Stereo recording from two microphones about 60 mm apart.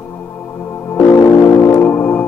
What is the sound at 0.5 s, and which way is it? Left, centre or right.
Music, left.